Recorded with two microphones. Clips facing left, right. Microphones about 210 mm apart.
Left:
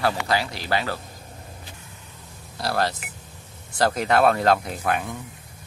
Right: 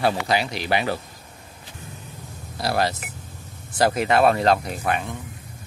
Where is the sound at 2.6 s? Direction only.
15° right (ahead or behind).